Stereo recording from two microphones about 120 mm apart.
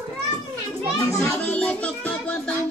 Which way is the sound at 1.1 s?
25° left (ahead or behind).